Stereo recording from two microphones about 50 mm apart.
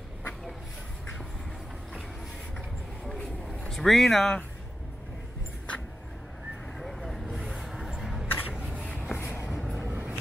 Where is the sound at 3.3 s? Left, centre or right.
Centre.